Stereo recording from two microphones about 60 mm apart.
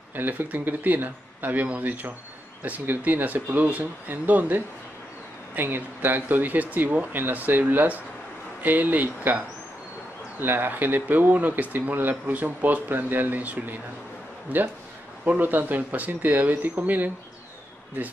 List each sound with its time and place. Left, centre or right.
0.1 s speech: right
10.4 s speech: right
15.2 s speech: right